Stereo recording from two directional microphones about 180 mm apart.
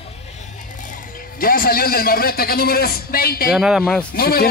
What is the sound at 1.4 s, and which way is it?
A man's voice, 55° left (ahead or behind).